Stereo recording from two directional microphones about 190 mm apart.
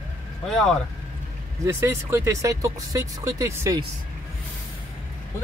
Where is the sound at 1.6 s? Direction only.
15° right (ahead or behind).